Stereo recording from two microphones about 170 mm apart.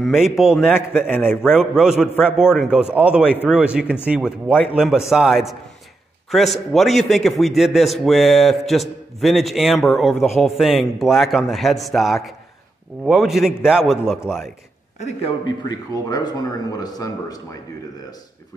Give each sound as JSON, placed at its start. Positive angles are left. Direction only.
{"t": 0.0, "sound": "a man's voice", "side_deg": -5}
{"t": 15.0, "sound": "speech", "side_deg": 40}
{"t": 15.4, "sound": "speech", "side_deg": 20}